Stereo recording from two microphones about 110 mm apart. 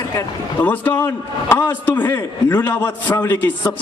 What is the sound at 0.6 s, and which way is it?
A man's voice, 15° left (ahead or behind).